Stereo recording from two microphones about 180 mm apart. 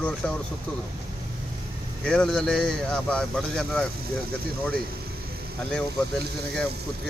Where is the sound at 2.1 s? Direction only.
5° left (ahead or behind).